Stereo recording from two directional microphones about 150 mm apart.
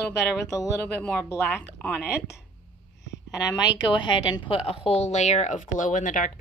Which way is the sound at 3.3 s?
25° left (ahead or behind).